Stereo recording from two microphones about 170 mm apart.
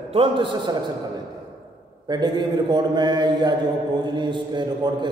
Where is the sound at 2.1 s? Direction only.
25° right (ahead or behind).